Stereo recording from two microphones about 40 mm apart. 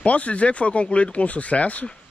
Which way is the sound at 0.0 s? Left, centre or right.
Left.